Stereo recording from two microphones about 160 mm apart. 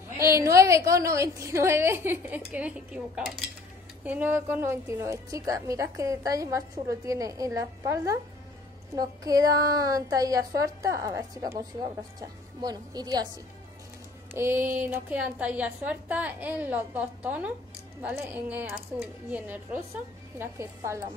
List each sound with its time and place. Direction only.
0.2 s a woman's voice: 20° right (ahead or behind)
14.3 s music: 15° right (ahead or behind)
14.9 s a woman's voice: 10° right (ahead or behind)